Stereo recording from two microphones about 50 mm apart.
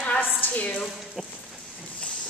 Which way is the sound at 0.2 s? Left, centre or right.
Left.